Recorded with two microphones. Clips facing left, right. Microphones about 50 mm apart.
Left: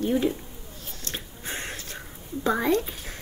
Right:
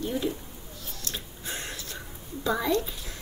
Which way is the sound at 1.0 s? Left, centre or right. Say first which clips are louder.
Left 2 dB; left.